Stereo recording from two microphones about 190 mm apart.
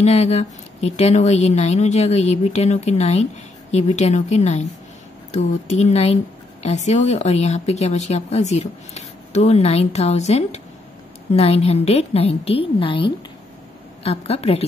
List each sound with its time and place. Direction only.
0.0 s speech: 35° left (ahead or behind)